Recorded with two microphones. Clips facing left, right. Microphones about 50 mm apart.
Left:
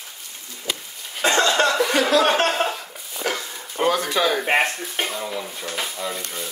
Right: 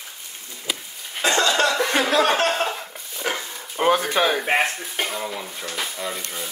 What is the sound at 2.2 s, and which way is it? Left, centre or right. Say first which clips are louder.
Speech: left 1 dB; left.